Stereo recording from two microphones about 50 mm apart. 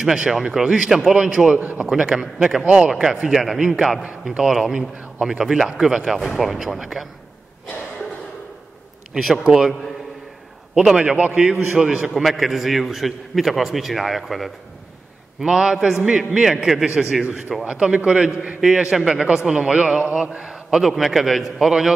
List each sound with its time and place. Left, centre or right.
0.0 s a man's voice: centre
2.6 s a man's voice: right
2.9 s a man's voice: centre
9.4 s a man's voice: centre
10.7 s a man's voice: centre
11.0 s a man's voice: right
11.7 s a man's voice: centre
12.2 s a man's voice: centre
15.4 s a man's voice: centre
18.6 s a man's voice: centre
20.8 s a man's voice: centre